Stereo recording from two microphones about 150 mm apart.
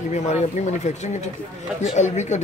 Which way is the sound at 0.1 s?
50° left (ahead or behind).